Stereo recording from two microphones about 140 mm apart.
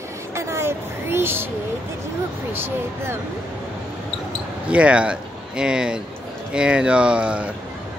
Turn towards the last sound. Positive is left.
turn(degrees=-10)  # may be behind; listen again after turning